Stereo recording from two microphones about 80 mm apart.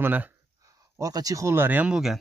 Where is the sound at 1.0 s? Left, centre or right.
Right.